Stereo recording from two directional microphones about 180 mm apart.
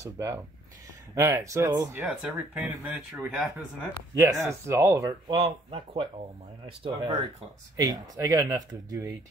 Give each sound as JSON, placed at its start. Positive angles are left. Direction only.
{"t": 0.0, "sound": "speech", "side_deg": -15}
{"t": 3.3, "sound": "speech", "side_deg": 0}
{"t": 4.1, "sound": "speech", "side_deg": -15}
{"t": 7.7, "sound": "speech", "side_deg": -20}